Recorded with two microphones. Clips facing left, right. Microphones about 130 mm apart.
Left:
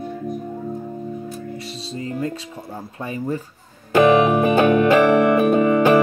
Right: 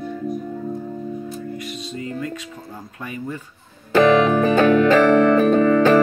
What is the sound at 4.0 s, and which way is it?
Music, 15° left (ahead or behind).